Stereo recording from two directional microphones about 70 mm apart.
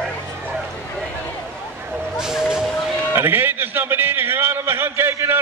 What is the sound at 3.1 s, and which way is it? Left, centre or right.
A man's voice, right.